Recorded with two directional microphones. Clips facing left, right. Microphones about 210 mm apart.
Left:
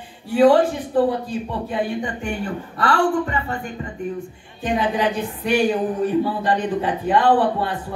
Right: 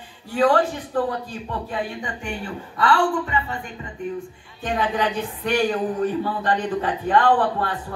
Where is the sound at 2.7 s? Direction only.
40° left (ahead or behind).